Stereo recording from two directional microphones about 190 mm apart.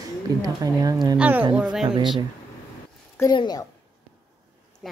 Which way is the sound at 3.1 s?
20° left (ahead or behind).